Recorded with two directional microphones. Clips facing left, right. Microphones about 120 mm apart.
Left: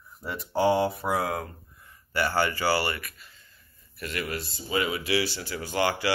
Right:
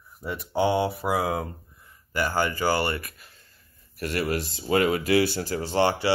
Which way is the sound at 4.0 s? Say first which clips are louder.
Right 6 dB; 40° right (ahead or behind).